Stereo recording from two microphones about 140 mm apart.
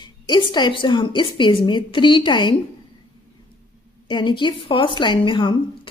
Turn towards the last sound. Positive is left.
turn(degrees=35)  # may be behind; listen again after turning